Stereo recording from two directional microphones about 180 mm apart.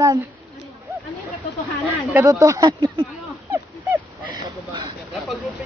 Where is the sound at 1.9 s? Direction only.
15° right (ahead or behind).